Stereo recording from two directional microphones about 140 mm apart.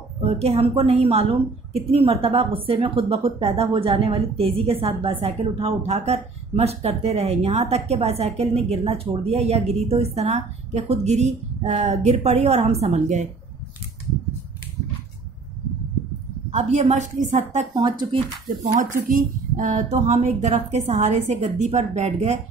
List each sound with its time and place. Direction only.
0.2 s a woman's voice: 50° right (ahead or behind)
16.4 s a woman's voice: 50° right (ahead or behind)
17.7 s speech: 30° right (ahead or behind)
18.8 s speech: 70° right (ahead or behind); by 22.4 s 55° right (ahead or behind)